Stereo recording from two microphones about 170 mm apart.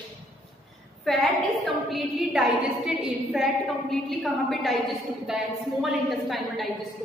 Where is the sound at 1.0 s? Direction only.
Centre (ahead or behind).